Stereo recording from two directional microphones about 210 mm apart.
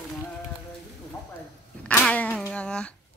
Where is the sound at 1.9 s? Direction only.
5° left (ahead or behind).